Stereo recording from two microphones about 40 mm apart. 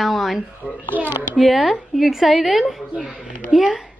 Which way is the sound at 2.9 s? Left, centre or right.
Left.